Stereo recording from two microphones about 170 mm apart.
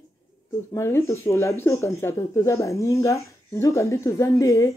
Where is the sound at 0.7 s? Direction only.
15° left (ahead or behind).